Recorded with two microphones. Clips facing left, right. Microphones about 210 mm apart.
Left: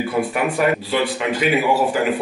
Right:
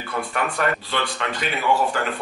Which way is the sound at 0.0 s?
5° left (ahead or behind).